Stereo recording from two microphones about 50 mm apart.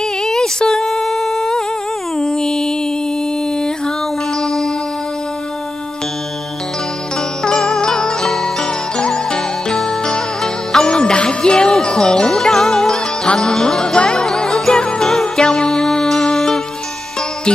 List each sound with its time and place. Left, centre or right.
0.2 s humming: centre
2.1 s music: centre
4.4 s music: centre
7.4 s music: centre